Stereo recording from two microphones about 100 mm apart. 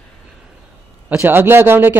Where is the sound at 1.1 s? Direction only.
20° right (ahead or behind).